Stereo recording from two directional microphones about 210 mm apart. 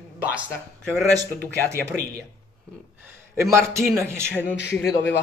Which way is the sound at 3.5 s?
15° right (ahead or behind).